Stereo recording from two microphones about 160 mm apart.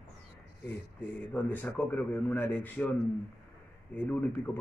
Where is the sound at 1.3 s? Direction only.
10° left (ahead or behind).